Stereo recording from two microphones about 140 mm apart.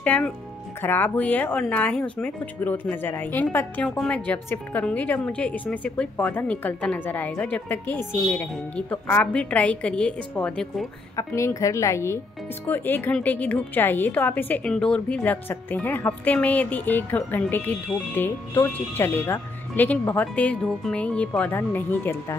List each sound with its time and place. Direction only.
0.0 s a woman's voice: 10° left (ahead or behind)
11.1 s a woman's voice: 20° left (ahead or behind)